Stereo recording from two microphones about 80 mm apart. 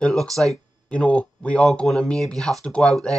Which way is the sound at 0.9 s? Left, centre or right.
Centre.